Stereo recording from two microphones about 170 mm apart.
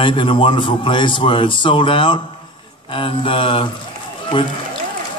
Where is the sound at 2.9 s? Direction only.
30° left (ahead or behind).